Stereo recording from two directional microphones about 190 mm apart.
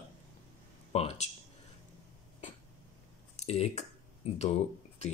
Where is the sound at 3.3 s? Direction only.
35° left (ahead or behind).